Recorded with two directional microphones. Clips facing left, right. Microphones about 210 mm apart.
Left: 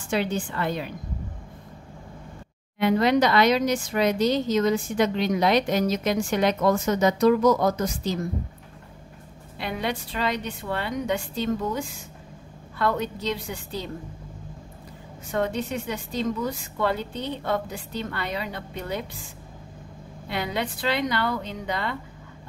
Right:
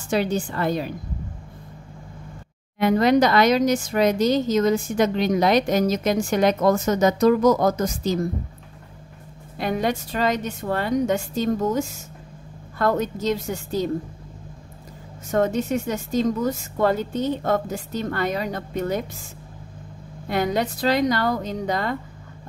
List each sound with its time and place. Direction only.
0.1 s a woman's voice: 40° right (ahead or behind)
2.8 s speech: 45° right (ahead or behind)
9.6 s speech: 45° right (ahead or behind)
15.3 s speech: 45° right (ahead or behind)
20.2 s speech: 45° right (ahead or behind)